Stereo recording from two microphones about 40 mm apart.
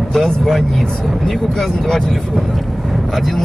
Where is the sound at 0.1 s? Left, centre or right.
Centre.